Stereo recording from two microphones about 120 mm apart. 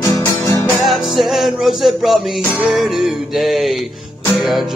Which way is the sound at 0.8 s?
Centre (ahead or behind).